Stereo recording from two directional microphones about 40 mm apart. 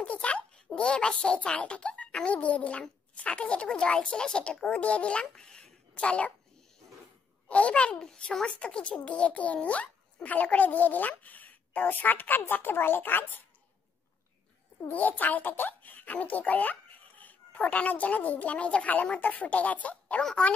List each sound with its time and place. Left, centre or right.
0.0 s a child's voice: left
7.4 s a child's voice: left
8.0 s a child's voice: centre; by 13.4 s left
14.9 s a child's voice: left